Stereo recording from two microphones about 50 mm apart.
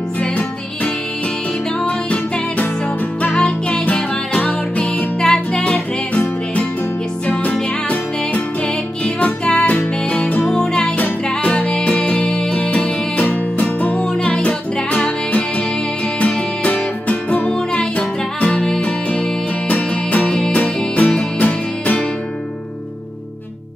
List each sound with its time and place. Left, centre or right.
0.2 s music: left
4.9 s music: centre
5.6 s music: left
9.0 s music: left
10.4 s music: centre; by 13.9 s left
13.9 s music: centre; by 17.6 s left
17.6 s music: left
20.2 s music: centre
20.5 s music: left